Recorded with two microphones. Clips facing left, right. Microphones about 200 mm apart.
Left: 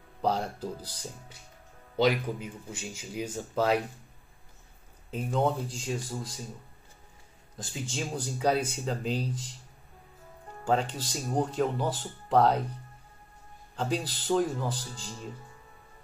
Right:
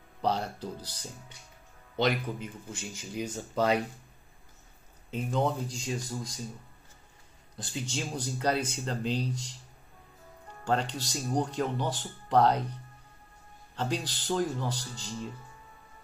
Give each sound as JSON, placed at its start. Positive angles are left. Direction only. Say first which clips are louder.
{"t": 0.2, "sound": "speech", "louder": "left 1 dB", "side_deg": 5}
{"t": 5.1, "sound": "speech", "louder": "left 1 dB", "side_deg": 5}
{"t": 7.7, "sound": "speech", "louder": "left 1 dB", "side_deg": 5}
{"t": 10.6, "sound": "speech", "louder": "left 2 dB", "side_deg": 5}
{"t": 13.7, "sound": "speech", "louder": "left 2 dB", "side_deg": 5}
{"t": 14.9, "sound": "speech", "louder": "right 1 dB", "side_deg": 40}